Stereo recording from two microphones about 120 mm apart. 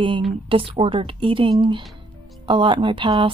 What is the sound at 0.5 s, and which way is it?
A woman's voice, 50° right (ahead or behind).